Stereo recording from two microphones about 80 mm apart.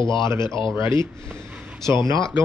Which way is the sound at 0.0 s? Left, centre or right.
Left.